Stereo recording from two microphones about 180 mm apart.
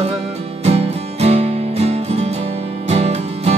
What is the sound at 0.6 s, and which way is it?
Music, 35° right (ahead or behind).